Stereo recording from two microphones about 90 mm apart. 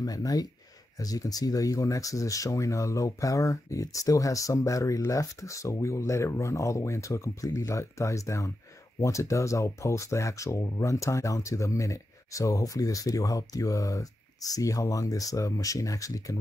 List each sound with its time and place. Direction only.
0.0 s speech: 45° left (ahead or behind)